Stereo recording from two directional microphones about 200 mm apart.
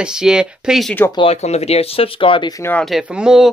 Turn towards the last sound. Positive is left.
turn(degrees=-5)  # may be behind; listen again after turning